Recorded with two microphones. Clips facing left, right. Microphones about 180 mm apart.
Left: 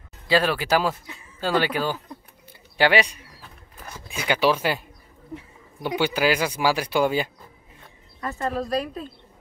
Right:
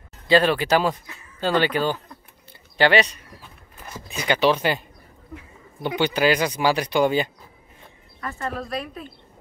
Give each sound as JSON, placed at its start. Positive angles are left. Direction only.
{"t": 0.3, "sound": "speech", "side_deg": 5}
{"t": 8.2, "sound": "speech", "side_deg": 25}
{"t": 8.5, "sound": "speech", "side_deg": 40}